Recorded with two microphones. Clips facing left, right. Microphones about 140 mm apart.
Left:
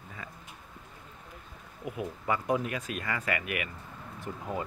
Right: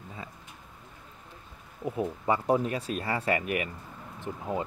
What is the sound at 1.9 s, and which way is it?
Speech, 30° right (ahead or behind).